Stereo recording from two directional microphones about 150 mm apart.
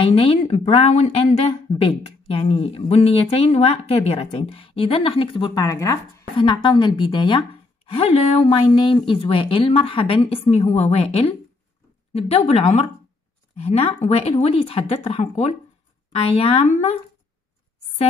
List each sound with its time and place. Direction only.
0.0 s a woman's voice: 40° left (ahead or behind); by 6.2 s 20° left (ahead or behind)
6.3 s a woman's voice: 30° left (ahead or behind); by 17.0 s 50° left (ahead or behind)